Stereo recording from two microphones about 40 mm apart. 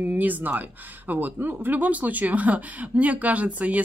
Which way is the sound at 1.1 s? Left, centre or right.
Right.